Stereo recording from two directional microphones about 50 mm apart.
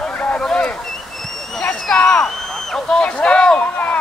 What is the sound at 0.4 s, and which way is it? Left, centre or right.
Boat, centre.